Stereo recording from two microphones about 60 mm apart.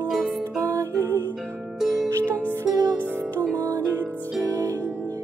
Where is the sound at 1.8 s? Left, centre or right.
Right.